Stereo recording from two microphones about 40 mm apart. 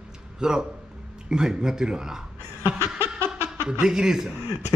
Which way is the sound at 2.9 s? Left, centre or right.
Right.